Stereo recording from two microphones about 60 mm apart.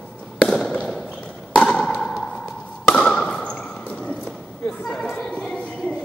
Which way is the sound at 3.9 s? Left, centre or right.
Centre.